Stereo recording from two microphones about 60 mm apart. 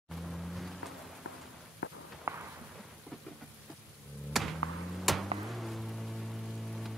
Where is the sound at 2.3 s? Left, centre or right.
Right.